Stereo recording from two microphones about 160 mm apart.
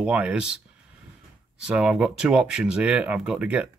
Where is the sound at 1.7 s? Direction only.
5° right (ahead or behind).